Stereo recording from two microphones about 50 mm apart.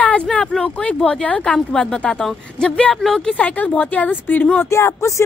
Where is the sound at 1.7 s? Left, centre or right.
Centre.